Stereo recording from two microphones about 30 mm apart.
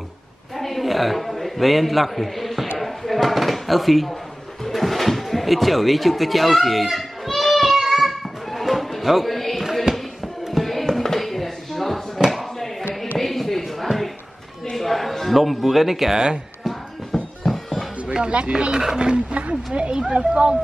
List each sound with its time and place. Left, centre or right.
0.6 s a man's voice: centre
2.8 s drawer open or close: centre
4.6 s speech: centre
7.3 s a sound: centre
7.7 s music: centre
8.5 s music: centre
13.2 s a sound: centre
16.6 s music: centre
18.2 s speech: right
18.7 s speech: centre
18.9 s speech: right
19.3 s speech: right